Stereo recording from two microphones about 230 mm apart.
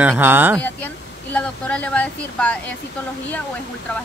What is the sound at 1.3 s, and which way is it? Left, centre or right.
Speech, centre.